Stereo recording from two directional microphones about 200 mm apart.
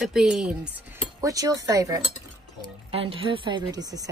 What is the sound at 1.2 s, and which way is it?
Speech, 15° right (ahead or behind).